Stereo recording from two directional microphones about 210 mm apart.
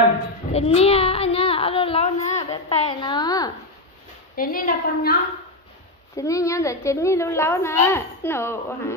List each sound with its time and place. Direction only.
0.5 s a sound: 30° left (ahead or behind)
2.5 s a woman's voice: 25° left (ahead or behind)
4.4 s a woman's voice: 40° left (ahead or behind)
6.1 s a woman's voice: 15° left (ahead or behind)